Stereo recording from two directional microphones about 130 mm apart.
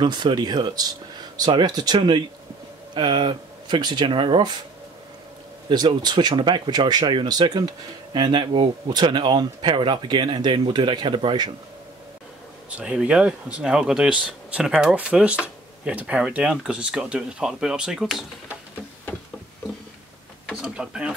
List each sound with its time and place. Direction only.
0.0 s speech: 35° right (ahead or behind)
5.7 s speech: 35° right (ahead or behind)
12.6 s speech: 10° right (ahead or behind)
20.6 s speech: 5° right (ahead or behind)